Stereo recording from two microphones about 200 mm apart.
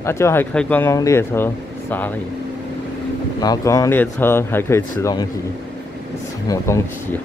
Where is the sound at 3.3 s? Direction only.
20° left (ahead or behind).